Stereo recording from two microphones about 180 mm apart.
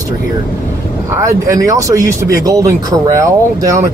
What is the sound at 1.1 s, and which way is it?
Speech, 20° right (ahead or behind).